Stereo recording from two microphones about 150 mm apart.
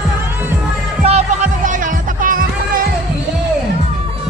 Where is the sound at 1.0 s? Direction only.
50° right (ahead or behind); by 2.9 s 70° right (ahead or behind).